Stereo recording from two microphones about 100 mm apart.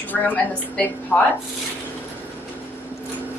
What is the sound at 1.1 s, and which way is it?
Speech, 20° left (ahead or behind).